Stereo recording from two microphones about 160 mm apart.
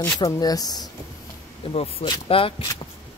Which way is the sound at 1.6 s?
35° left (ahead or behind).